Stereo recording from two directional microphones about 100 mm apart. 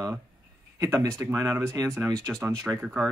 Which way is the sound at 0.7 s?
30° right (ahead or behind).